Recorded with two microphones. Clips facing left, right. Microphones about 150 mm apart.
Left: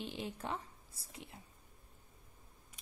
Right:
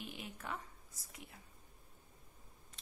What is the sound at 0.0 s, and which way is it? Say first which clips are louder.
Speech: left 6 dB; 30° left (ahead or behind).